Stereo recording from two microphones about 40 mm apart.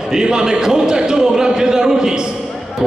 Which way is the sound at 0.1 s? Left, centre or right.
Centre.